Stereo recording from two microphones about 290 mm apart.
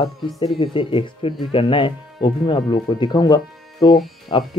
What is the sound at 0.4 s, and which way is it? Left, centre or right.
Speech, centre.